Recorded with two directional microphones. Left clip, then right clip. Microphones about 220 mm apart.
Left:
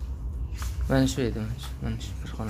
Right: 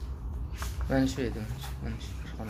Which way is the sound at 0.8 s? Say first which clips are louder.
Left 4 dB; 25° left (ahead or behind).